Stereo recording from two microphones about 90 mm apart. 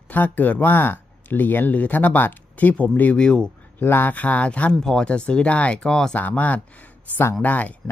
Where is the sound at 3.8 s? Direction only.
20° left (ahead or behind).